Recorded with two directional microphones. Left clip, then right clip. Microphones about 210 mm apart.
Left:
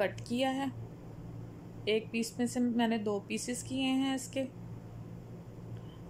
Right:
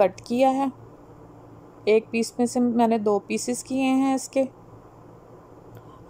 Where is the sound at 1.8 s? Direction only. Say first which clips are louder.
Right 12 dB; 20° right (ahead or behind).